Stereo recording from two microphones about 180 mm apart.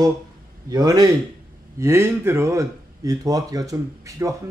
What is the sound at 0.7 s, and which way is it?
Speech, 20° right (ahead or behind).